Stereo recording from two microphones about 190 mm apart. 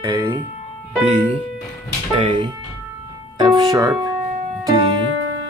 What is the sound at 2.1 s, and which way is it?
Music, 25° right (ahead or behind).